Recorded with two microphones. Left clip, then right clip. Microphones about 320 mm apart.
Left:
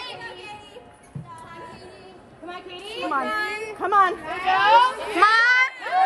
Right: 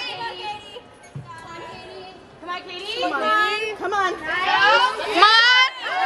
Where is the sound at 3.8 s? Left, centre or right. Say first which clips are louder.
Left 8 dB; centre.